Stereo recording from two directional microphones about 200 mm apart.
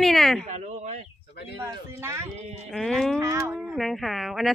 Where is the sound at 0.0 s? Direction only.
Centre (ahead or behind).